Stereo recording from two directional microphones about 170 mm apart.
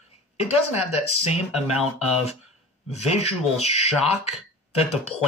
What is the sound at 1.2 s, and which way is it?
Speech, 40° left (ahead or behind).